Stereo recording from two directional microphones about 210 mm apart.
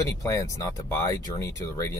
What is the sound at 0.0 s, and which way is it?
Speech, 15° left (ahead or behind).